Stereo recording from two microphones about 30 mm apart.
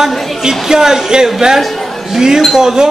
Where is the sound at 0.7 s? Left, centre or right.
Centre.